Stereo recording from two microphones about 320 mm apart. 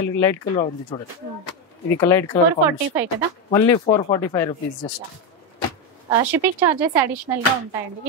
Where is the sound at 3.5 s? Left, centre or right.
Centre.